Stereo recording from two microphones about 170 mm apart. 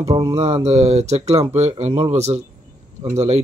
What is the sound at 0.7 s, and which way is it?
Speech, 40° right (ahead or behind).